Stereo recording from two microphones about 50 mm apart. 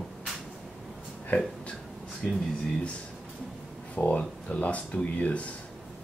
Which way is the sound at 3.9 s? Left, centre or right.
Left.